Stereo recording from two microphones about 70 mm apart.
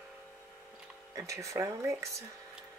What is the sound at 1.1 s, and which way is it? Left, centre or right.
Speech, right.